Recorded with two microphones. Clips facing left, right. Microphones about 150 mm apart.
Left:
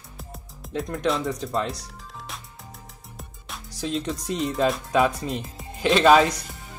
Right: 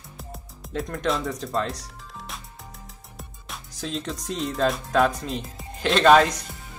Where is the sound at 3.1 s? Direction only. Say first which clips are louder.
Even; centre (ahead or behind).